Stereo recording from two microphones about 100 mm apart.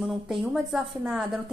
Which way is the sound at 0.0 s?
5° right (ahead or behind).